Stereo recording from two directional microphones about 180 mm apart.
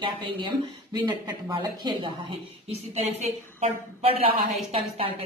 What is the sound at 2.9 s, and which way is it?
A woman's voice, 40° right (ahead or behind).